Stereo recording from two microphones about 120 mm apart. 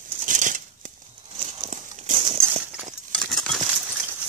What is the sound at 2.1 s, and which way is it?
Horse, 55° right (ahead or behind).